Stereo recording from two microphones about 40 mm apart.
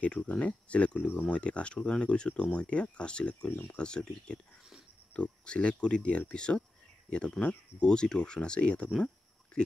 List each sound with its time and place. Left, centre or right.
0.0 s speech: left
5.1 s speech: left